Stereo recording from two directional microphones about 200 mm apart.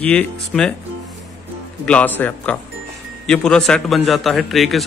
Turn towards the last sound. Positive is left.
turn(degrees=0)  # may be behind; listen again after turning